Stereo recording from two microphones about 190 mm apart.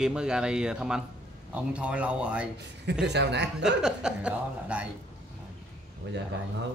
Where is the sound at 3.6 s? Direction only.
5° right (ahead or behind).